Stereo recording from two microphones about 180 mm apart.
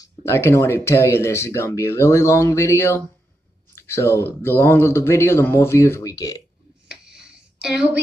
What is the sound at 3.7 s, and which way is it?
A man's voice, 15° left (ahead or behind).